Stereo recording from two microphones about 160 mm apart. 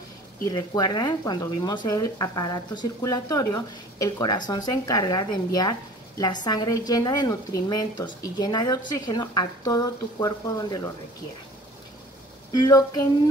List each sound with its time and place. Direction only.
0.5 s speech: 25° left (ahead or behind)
12.6 s speech: 25° left (ahead or behind)